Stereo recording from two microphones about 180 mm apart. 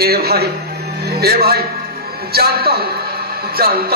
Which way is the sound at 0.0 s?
60° right (ahead or behind).